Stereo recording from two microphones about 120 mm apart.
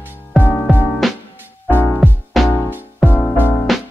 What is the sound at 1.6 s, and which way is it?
Music, 15° left (ahead or behind).